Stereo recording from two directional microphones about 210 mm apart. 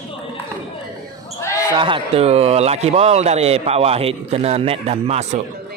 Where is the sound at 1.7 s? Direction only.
25° right (ahead or behind).